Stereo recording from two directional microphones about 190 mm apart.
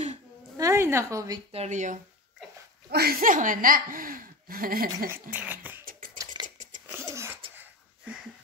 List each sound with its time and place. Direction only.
0.6 s speech: 15° right (ahead or behind)
1.5 s speech: 35° right (ahead or behind)
2.9 s speech: 55° right (ahead or behind)
5.1 s speech: 10° right (ahead or behind)
6.4 s a sound: 40° right (ahead or behind)
6.9 s wheeze: 15° right (ahead or behind)